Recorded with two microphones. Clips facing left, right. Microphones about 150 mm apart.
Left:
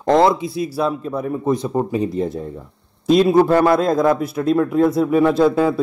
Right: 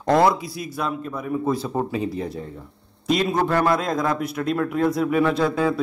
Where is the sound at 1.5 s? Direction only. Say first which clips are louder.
Left 6 dB; 20° left (ahead or behind).